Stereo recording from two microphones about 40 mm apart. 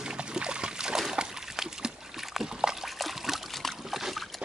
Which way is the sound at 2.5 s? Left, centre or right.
Centre.